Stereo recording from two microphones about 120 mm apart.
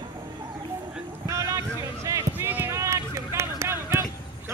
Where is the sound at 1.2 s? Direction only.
25° right (ahead or behind).